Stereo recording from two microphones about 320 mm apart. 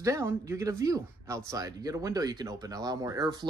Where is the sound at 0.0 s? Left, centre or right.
Centre.